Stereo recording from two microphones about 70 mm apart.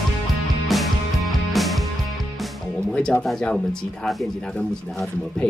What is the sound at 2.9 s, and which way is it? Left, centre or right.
Speech, centre.